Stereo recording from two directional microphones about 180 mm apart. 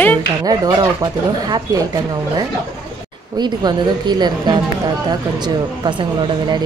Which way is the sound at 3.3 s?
25° right (ahead or behind).